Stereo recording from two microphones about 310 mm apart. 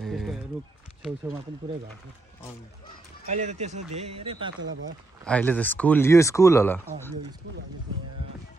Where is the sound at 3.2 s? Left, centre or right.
Right.